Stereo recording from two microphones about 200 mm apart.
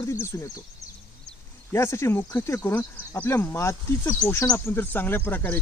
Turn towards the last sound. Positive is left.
turn(degrees=10)  # may be behind; listen again after turning